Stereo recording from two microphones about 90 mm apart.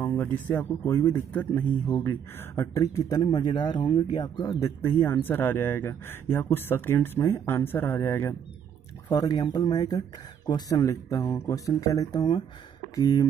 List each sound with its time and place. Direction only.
0.0 s speech: 20° left (ahead or behind)
2.0 s speech: 40° left (ahead or behind)
4.6 s speech: 30° left (ahead or behind)
9.1 s speech: 45° left (ahead or behind)